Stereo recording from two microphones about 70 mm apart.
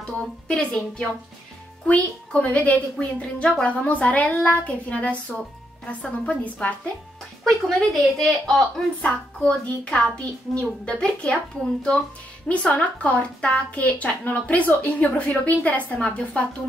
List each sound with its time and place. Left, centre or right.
0.0 s a woman's voice: centre
7.4 s a woman's voice: centre
12.4 s a woman's voice: centre